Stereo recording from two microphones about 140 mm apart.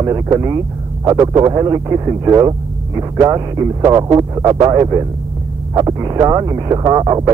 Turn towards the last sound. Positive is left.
turn(degrees=-30)  # may be behind; listen again after turning